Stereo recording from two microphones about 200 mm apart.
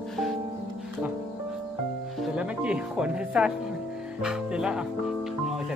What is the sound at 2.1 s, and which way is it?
Speech, 5° right (ahead or behind).